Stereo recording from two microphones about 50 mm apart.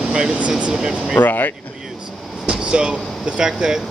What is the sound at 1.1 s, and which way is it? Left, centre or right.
Speech, left.